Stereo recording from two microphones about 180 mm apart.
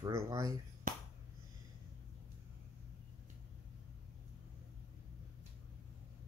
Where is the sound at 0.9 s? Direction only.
45° right (ahead or behind).